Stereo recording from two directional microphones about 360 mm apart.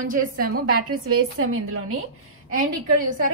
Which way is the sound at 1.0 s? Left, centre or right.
Right.